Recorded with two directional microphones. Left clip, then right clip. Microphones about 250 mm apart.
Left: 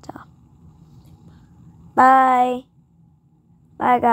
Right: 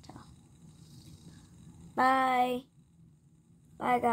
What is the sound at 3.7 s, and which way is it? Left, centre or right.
Speech, left.